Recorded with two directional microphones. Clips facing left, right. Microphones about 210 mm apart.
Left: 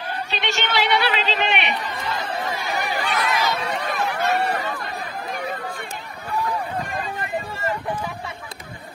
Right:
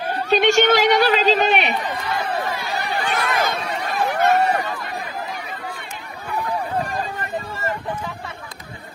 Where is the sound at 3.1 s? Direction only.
50° right (ahead or behind).